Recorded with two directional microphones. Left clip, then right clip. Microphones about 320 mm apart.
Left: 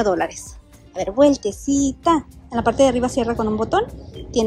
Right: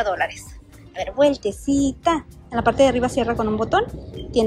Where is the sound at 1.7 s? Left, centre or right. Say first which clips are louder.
Left 1 dB; left.